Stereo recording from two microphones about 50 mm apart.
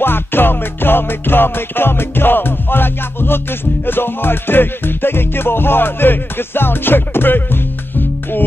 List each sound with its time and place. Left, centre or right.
0.0 s music: left